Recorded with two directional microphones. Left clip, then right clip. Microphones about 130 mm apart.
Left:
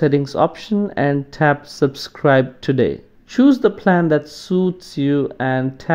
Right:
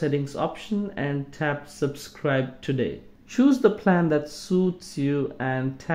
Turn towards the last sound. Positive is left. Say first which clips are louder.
# left 8 dB
turn(degrees=30)  # may be behind; listen again after turning